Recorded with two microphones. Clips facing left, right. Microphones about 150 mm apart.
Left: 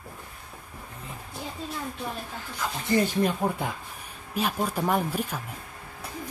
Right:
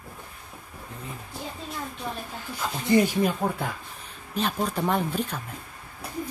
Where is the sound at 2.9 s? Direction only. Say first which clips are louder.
Right 4 dB; 20° right (ahead or behind).